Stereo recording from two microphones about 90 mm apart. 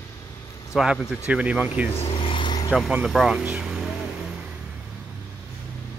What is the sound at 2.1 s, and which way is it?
Vehicle, 70° left (ahead or behind).